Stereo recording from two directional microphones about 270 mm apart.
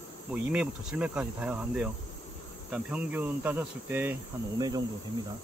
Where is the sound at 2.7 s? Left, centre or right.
Centre.